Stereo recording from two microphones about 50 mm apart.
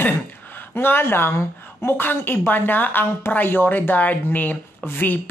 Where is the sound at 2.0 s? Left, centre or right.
Left.